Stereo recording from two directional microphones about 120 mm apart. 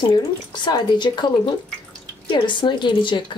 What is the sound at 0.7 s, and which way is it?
Speech, 35° left (ahead or behind).